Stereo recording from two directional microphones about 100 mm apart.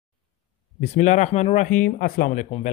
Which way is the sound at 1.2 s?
90° left.